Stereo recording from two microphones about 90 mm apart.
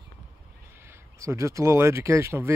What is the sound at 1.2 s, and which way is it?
Speech, 35° right (ahead or behind).